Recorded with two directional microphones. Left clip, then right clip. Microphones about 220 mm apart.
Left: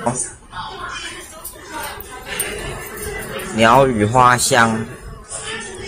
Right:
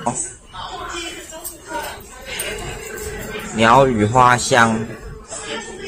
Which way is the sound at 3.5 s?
Centre (ahead or behind).